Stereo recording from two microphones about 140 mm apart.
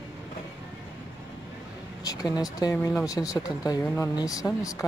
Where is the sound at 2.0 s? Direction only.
25° left (ahead or behind).